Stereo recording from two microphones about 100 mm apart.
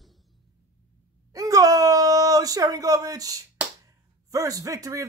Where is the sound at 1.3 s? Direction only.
35° right (ahead or behind).